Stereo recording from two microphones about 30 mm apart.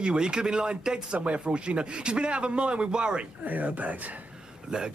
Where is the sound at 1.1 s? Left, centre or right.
Right.